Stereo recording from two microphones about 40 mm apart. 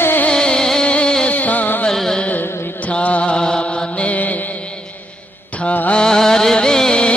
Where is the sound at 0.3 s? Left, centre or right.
Centre.